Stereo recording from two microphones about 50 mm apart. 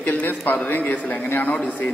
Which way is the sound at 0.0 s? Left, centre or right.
Left.